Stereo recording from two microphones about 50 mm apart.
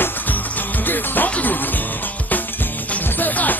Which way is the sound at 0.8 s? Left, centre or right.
Left.